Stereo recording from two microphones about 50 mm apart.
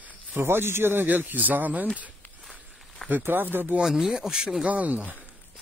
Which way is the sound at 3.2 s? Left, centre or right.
Right.